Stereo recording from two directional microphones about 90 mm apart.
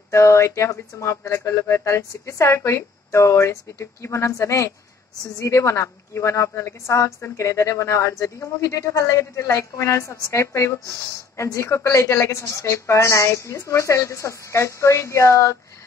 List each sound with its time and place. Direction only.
0.1 s a woman's voice: 30° left (ahead or behind)